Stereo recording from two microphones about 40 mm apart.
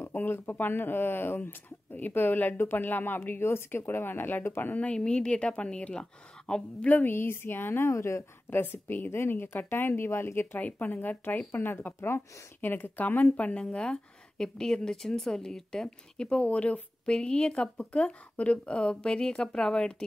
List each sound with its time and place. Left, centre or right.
0.1 s speech: left
2.0 s speech: left
4.7 s speech: left
6.9 s speech: left
9.1 s speech: left
10.6 s speech: left
12.6 s speech: left
16.4 s speech: left
17.1 s speech: left
17.9 s speech: left
18.8 s speech: left